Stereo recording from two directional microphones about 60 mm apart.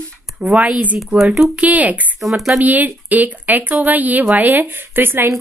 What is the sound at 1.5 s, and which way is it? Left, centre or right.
Speech, right.